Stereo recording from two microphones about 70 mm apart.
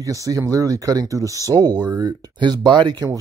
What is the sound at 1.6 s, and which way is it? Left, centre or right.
Speech, right.